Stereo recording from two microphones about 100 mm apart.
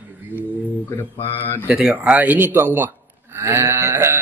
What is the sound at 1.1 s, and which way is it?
Speech, 75° left (ahead or behind).